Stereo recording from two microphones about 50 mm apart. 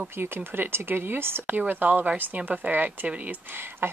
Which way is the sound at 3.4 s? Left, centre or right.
Right.